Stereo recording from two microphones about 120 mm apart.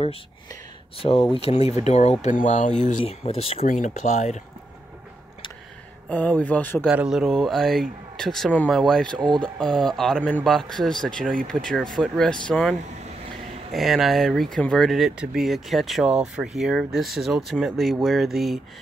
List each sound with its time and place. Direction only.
0.9 s speech: 50° left (ahead or behind)
1.9 s speech: 70° left (ahead or behind); by 3.0 s 90° left
3.0 s speech: 55° left (ahead or behind); by 4.4 s 75° left (ahead or behind)
6.0 s speech: 10° left (ahead or behind)
6.9 s speech: 5° right (ahead or behind)
9.2 s speech: 40° right (ahead or behind)
9.6 s speech: 5° left (ahead or behind)
13.7 s speech: centre (ahead or behind)